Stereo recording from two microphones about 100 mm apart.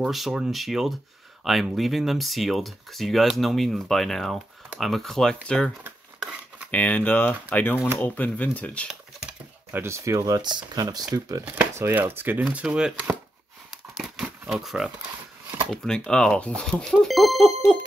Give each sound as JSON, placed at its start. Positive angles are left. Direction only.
{"t": 0.1, "sound": "speech", "side_deg": -5}
{"t": 6.7, "sound": "speech", "side_deg": 15}
{"t": 9.7, "sound": "speech", "side_deg": -25}
{"t": 11.4, "sound": "speech", "side_deg": -20}
{"t": 12.4, "sound": "speech", "side_deg": -10}
{"t": 13.9, "sound": "crumpling", "side_deg": 0}
{"t": 14.5, "sound": "speech", "side_deg": 0}
{"t": 16.8, "sound": "speech", "side_deg": 0}